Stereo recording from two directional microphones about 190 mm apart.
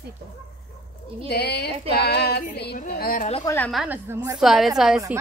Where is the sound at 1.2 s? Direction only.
60° left (ahead or behind).